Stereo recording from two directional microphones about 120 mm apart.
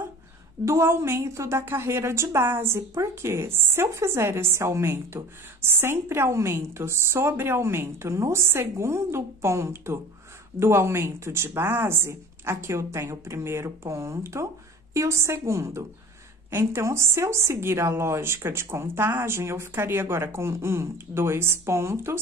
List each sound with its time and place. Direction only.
0.7 s a woman's voice: 20° right (ahead or behind)